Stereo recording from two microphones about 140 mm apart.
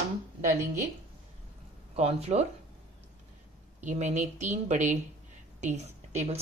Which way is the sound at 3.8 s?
60° right (ahead or behind).